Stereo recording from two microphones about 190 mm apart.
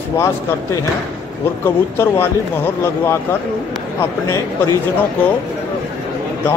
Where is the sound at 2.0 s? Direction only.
15° left (ahead or behind).